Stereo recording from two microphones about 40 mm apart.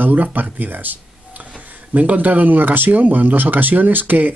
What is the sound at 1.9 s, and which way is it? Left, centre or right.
Speech, right.